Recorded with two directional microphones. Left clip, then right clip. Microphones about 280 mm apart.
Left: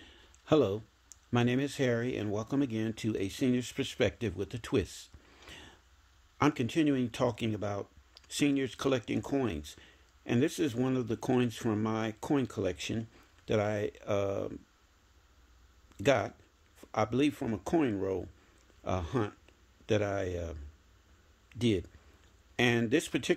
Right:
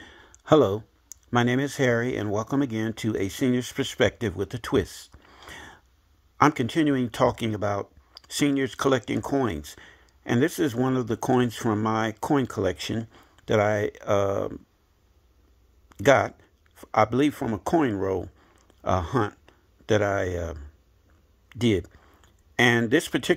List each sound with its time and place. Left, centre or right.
0.0 s speech: centre
15.9 s speech: centre